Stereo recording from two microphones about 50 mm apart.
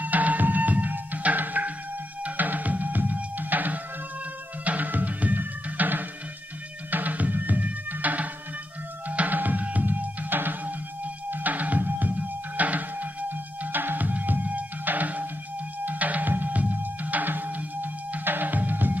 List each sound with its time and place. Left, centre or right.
0.0 s music: right